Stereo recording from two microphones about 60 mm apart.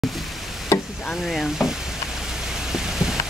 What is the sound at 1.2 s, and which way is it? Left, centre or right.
Stir, centre.